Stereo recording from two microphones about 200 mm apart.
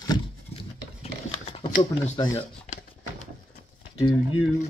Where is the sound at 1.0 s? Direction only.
30° left (ahead or behind).